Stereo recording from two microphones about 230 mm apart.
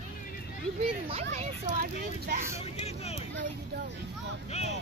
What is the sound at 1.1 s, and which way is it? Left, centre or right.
Speech, right.